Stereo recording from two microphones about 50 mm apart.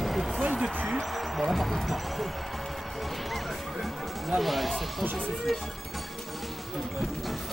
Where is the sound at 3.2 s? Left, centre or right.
Centre.